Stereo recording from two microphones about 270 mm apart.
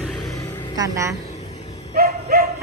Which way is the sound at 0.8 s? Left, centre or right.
Centre.